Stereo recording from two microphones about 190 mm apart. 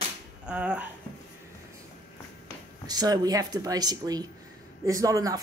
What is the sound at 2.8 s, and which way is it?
A man's voice, 20° right (ahead or behind).